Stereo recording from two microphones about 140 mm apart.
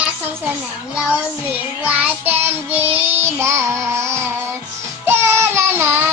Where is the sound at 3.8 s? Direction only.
20° right (ahead or behind).